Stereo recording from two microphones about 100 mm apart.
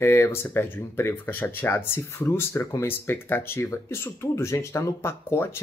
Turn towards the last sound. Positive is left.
turn(degrees=25)  # may be behind; listen again after turning